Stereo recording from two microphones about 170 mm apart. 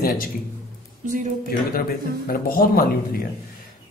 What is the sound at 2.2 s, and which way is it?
Speech, 60° left (ahead or behind).